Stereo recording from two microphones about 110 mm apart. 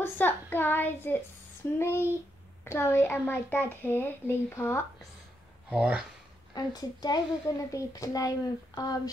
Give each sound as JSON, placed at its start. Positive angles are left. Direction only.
{"t": 0.0, "sound": "a child's voice", "side_deg": 15}
{"t": 5.7, "sound": "speech", "side_deg": -10}
{"t": 6.5, "sound": "a child's voice", "side_deg": 35}